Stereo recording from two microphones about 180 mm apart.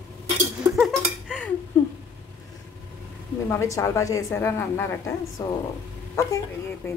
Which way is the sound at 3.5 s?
15° left (ahead or behind).